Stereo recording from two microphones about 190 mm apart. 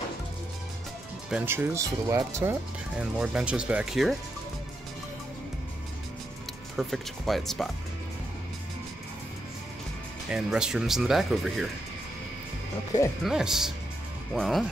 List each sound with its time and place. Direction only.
1.3 s speech: 10° right (ahead or behind)
6.8 s speech: centre (ahead or behind)
10.3 s speech: 5° right (ahead or behind)
13.2 s speech: centre (ahead or behind)